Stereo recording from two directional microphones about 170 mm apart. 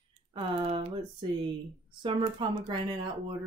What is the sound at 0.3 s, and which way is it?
Speech, 35° right (ahead or behind).